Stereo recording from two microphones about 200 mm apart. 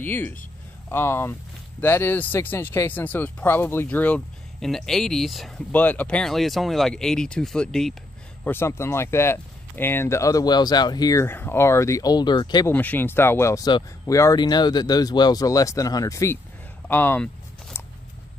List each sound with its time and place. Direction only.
0.0 s speech: 10° left (ahead or behind)
12.7 s speech: 10° left (ahead or behind)
16.8 s a sound: 10° left (ahead or behind)